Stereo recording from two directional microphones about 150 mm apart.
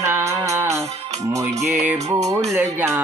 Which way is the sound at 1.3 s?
50° right (ahead or behind).